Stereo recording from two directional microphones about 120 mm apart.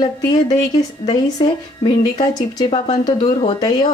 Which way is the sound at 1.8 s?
40° left (ahead or behind).